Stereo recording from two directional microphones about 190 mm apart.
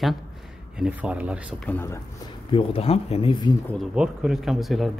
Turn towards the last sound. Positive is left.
turn(degrees=0)  # may be behind; listen again after turning